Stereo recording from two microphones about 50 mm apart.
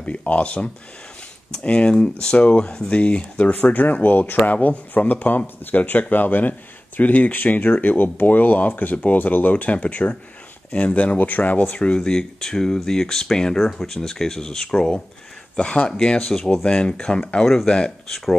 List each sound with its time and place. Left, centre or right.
0.0 s speech: left
11.7 s speech: left